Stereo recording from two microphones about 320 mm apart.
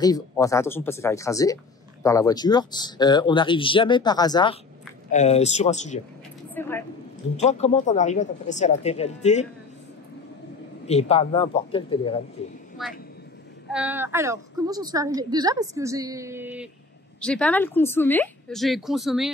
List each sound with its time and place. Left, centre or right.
0.0 s speech: centre
6.5 s a sound: centre
7.3 s speech: left
10.9 s speech: centre
13.7 s a woman's voice: centre